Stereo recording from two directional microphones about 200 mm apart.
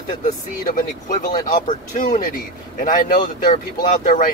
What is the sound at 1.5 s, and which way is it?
Speech, 40° left (ahead or behind).